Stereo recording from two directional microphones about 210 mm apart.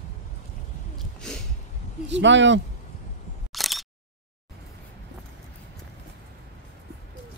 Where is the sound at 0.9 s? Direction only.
5° left (ahead or behind).